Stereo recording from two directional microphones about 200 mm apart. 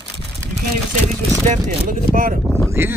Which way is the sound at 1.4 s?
35° right (ahead or behind).